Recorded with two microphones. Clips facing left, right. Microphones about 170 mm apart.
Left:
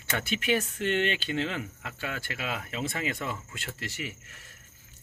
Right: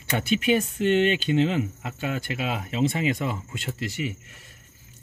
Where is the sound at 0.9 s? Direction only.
15° right (ahead or behind).